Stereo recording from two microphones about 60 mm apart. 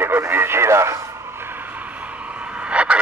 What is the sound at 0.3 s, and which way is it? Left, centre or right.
Radio, right.